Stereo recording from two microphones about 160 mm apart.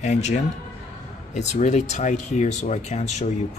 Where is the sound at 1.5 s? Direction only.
45° left (ahead or behind).